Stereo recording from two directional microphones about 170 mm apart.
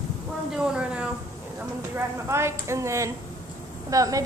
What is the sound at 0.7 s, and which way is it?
Speech, 5° right (ahead or behind).